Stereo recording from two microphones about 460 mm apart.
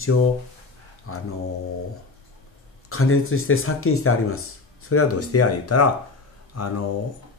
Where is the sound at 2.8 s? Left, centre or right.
Left.